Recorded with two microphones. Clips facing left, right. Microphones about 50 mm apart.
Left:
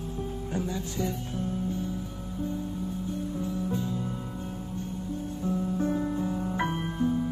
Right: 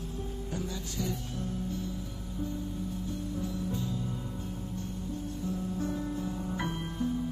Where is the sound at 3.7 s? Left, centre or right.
Left.